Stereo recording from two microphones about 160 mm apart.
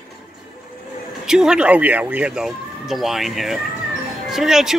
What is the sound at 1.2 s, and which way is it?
Speech, 5° right (ahead or behind).